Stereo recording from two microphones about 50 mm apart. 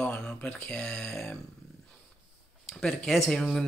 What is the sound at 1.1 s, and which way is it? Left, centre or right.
Speech, centre.